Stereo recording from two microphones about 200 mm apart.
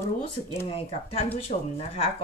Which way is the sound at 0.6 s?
30° left (ahead or behind).